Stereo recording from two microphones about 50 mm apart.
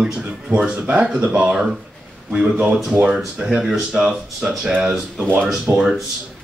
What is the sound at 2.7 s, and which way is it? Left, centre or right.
Speech, centre.